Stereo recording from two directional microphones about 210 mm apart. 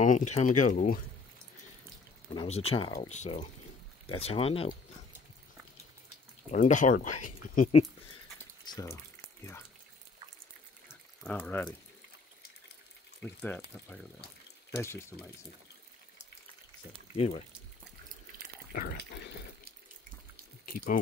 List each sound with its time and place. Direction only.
0.0 s speech: 35° left (ahead or behind)
2.3 s speech: 30° left (ahead or behind)
6.5 s speech: 35° left (ahead or behind)
8.6 s speech: 20° left (ahead or behind)
11.2 s speech: 5° left (ahead or behind)
13.2 s speech: 5° left (ahead or behind)
14.8 s speech: 10° left (ahead or behind)
18.8 s water: 50° left (ahead or behind)
20.6 s speech: 40° left (ahead or behind)